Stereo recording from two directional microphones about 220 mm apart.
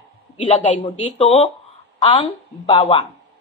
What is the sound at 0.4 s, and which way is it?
A woman's voice, 30° left (ahead or behind).